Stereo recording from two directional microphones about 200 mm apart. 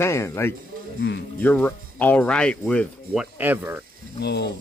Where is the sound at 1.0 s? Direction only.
60° left (ahead or behind).